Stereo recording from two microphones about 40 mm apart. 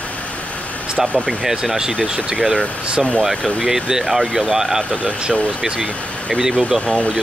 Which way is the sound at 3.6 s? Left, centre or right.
Centre.